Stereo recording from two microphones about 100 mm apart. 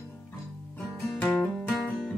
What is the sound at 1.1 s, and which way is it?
Music, 20° left (ahead or behind).